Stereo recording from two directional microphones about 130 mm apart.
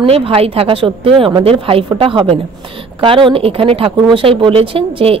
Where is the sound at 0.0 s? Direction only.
45° right (ahead or behind).